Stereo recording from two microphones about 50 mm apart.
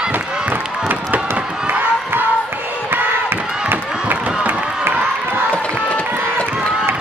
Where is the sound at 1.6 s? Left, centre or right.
Right.